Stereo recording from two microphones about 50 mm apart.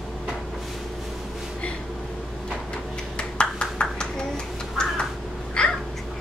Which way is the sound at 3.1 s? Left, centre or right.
Centre.